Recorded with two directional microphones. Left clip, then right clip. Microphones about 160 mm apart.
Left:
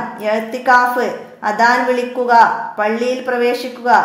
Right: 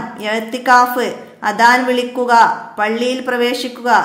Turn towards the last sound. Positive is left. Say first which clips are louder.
# left 1 dB
turn(degrees=-20)  # may be behind; listen again after turning